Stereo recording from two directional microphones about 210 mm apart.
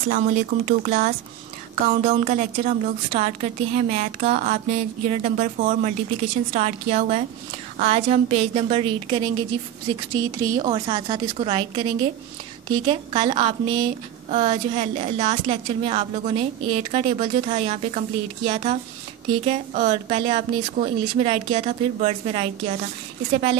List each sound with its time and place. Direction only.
0.5 s a woman's voice: 40° right (ahead or behind)